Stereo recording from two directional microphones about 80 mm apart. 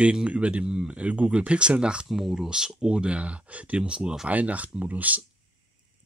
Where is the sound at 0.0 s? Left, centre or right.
Centre.